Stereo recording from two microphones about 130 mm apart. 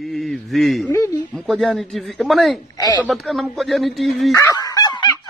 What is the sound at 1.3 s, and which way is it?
A man's voice, 5° left (ahead or behind).